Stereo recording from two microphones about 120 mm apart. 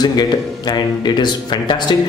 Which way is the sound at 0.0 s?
35° left (ahead or behind).